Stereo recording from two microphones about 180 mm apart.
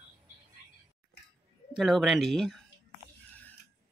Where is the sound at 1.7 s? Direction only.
Centre (ahead or behind).